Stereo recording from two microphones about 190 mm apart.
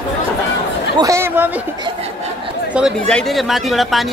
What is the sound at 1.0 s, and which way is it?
Speech, 15° right (ahead or behind).